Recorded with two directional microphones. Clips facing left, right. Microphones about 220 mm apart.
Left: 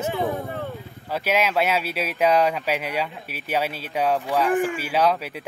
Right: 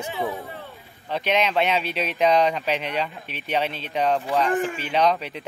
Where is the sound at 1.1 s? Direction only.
5° left (ahead or behind).